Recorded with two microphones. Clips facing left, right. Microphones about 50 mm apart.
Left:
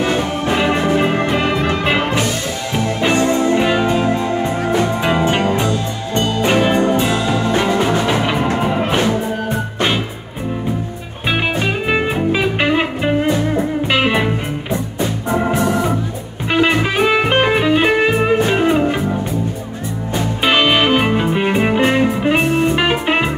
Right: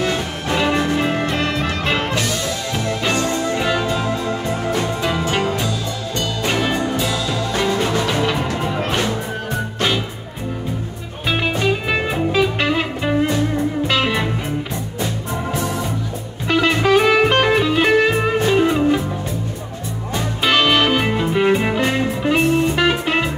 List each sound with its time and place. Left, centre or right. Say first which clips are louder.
0.0 s music: left 4 dB; left
11.2 s music: left 1 dB; centre
16.4 s music: left 1 dB; centre
20.4 s music: left 2 dB; centre